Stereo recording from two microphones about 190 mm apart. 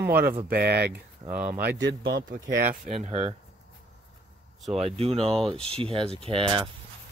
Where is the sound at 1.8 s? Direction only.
70° right (ahead or behind).